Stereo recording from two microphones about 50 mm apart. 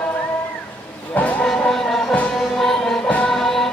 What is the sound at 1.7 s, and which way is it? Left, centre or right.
Music, centre.